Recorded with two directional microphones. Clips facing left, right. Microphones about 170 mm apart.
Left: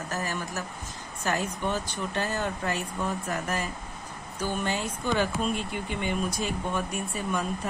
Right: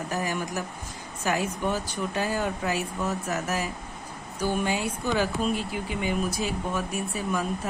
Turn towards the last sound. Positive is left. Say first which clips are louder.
# right 2 dB
turn(degrees=-5)  # may be behind; listen again after turning